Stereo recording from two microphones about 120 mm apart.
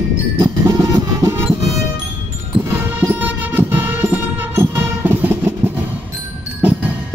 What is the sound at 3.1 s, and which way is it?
Music, 15° right (ahead or behind).